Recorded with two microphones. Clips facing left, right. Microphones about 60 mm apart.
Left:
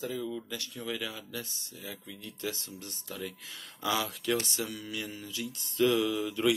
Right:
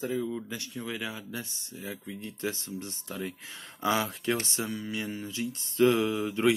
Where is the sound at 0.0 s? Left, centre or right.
Right.